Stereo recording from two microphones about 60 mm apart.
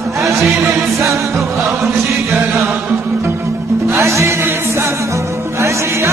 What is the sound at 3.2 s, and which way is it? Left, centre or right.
Music, right.